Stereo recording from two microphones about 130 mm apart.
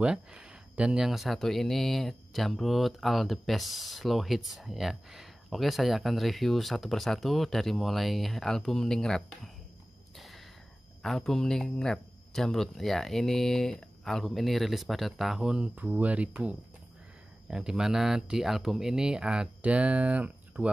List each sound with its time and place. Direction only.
0.0 s speech: 5° right (ahead or behind)
10.1 s a sound: centre (ahead or behind)
11.0 s speech: 5° left (ahead or behind)